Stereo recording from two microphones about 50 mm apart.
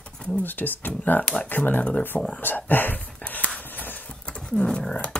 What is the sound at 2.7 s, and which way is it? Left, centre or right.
Speech, left.